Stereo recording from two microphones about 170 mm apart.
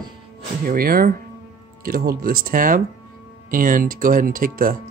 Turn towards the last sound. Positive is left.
turn(degrees=-55)  # may be behind; listen again after turning